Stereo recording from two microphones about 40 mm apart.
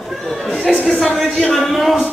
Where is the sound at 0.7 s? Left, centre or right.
Centre.